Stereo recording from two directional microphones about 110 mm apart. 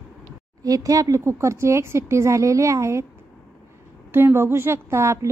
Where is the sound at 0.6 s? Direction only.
35° right (ahead or behind).